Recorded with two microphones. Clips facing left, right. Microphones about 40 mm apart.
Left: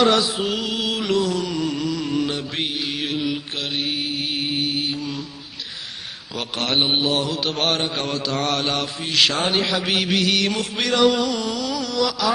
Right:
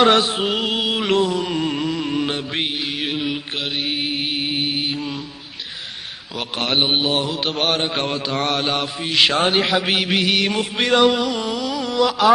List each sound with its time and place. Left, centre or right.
0.0 s music: right
1.2 s mantra: right
3.0 s mantra: centre
4.3 s music: centre
6.3 s mantra: centre
7.0 s a man's voice: right; by 7.8 s centre
7.9 s music: right
8.5 s mantra: centre
9.5 s a man's voice: right
11.1 s a sound: centre